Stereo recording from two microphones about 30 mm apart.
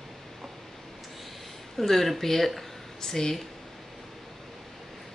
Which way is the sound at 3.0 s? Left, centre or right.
Centre.